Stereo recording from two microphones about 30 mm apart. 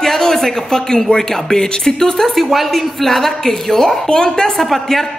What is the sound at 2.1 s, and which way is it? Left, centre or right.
A woman's voice, centre.